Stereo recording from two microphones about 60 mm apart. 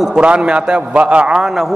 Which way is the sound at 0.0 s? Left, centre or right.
Centre.